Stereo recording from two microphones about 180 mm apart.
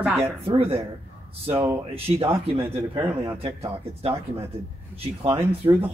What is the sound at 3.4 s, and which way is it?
Speech, 35° right (ahead or behind).